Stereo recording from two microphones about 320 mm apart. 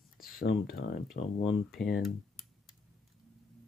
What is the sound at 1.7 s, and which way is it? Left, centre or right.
Speech, centre.